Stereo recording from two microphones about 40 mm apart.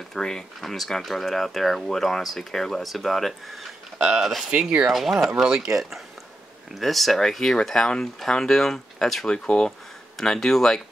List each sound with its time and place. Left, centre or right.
0.1 s speech: centre
5.4 s speech: centre
6.8 s speech: centre